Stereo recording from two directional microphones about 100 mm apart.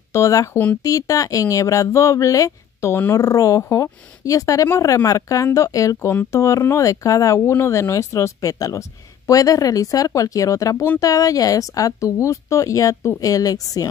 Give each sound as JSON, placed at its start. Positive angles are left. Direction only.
{"t": 0.1, "sound": "speech", "side_deg": 35}